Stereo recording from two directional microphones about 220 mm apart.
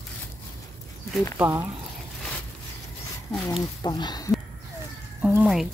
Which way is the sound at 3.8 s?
20° left (ahead or behind).